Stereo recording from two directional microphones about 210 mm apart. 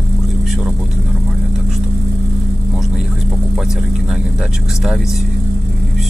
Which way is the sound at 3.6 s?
Centre (ahead or behind).